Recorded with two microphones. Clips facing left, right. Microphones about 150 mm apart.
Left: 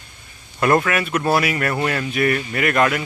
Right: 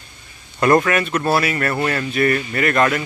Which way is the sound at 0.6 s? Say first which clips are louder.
Right 2 dB; 5° left (ahead or behind).